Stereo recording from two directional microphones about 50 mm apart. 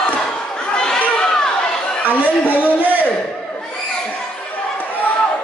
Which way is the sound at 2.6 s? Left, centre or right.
Right.